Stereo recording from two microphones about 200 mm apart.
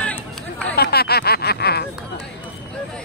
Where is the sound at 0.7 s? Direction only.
50° left (ahead or behind).